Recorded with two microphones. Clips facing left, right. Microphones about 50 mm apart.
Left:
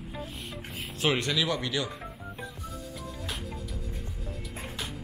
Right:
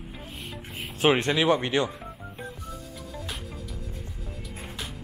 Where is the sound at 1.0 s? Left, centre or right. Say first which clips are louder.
Right 6 dB; right.